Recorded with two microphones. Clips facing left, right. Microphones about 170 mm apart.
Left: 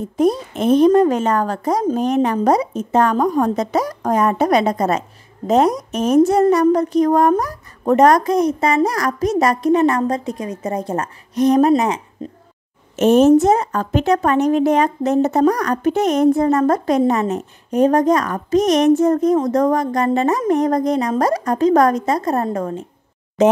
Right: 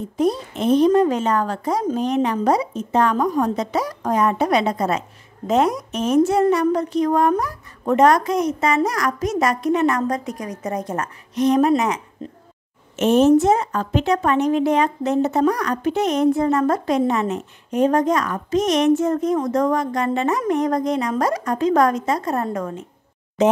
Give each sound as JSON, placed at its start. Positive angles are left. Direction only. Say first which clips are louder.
{"t": 0.2, "sound": "a woman's voice", "louder": "left 3 dB", "side_deg": 50}
{"t": 12.9, "sound": "a woman's voice", "louder": "left 3 dB", "side_deg": 40}
{"t": 23.4, "sound": "a woman's voice", "louder": "left 3 dB", "side_deg": 45}